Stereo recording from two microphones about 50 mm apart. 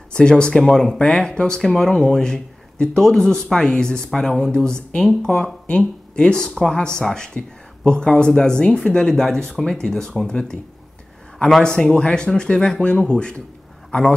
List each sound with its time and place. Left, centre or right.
0.1 s speech: centre
0.9 s speech: left
11.6 s a man's voice: centre